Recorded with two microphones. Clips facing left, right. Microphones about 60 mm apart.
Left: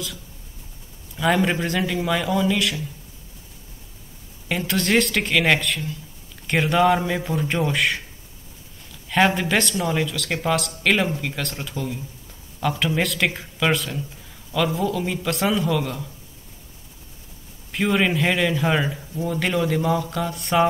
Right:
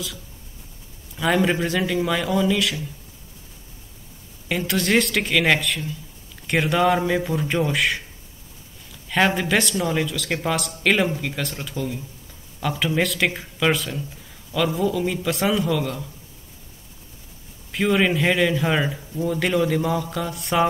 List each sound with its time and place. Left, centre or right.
1.1 s a man's voice: centre
4.5 s a man's voice: centre
9.1 s a man's voice: centre
11.7 s speech: centre
12.5 s a man's voice: centre
17.6 s a man's voice: centre